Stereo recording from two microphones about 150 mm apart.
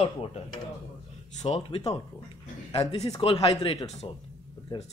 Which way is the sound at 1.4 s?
40° left (ahead or behind).